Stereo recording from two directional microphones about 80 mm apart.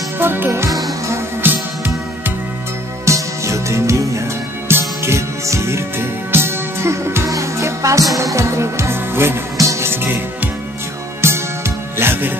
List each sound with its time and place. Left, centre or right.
0.2 s music: right
0.7 s music: centre
1.4 s music: right
3.1 s music: right
11.1 s music: right